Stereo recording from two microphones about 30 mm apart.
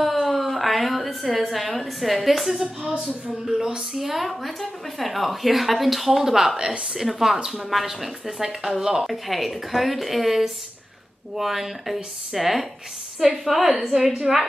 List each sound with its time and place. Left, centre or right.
0.0 s a sound: centre
3.4 s a woman's voice: right
4.0 s a woman's voice: centre
6.5 s a woman's voice: right
7.0 s speech: centre
9.0 s a woman's voice: centre
14.1 s a woman's voice: right